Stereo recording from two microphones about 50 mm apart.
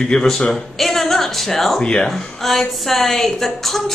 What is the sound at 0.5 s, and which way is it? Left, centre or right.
A woman's voice, centre.